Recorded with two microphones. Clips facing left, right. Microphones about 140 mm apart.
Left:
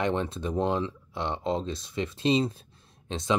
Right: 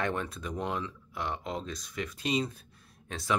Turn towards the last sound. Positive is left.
turn(degrees=20)  # may be behind; listen again after turning